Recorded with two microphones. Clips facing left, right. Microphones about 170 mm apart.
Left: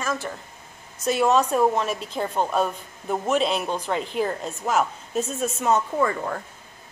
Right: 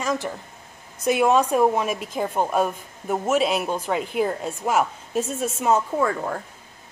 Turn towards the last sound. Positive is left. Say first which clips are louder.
# right 1 dB
turn(degrees=0)  # may be behind; listen again after turning